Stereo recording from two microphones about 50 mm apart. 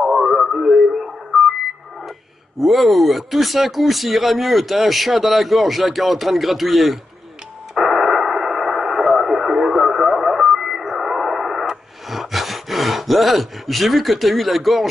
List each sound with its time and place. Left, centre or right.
0.0 s radio: centre
2.6 s speech: centre
7.7 s radio: centre